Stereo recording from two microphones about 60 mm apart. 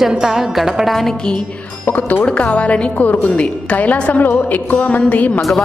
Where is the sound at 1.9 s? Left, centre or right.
Left.